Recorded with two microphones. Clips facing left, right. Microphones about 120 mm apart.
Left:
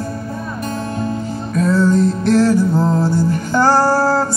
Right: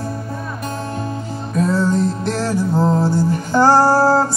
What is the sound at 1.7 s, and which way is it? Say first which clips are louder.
Music: left 5 dB; 25° right (ahead or behind).